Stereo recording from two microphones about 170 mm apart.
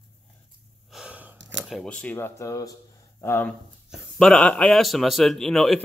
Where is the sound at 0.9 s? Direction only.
5° right (ahead or behind).